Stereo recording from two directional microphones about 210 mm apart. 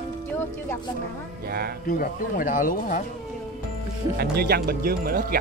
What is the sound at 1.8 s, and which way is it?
Speech, 40° left (ahead or behind).